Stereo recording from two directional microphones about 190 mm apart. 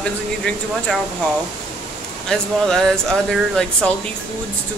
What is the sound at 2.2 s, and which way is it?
Speech, 5° left (ahead or behind).